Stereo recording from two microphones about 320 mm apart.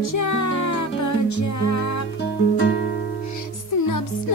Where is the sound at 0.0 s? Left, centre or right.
Left.